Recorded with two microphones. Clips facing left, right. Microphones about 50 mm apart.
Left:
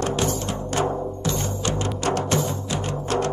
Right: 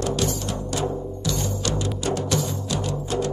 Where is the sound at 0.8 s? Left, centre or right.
Left.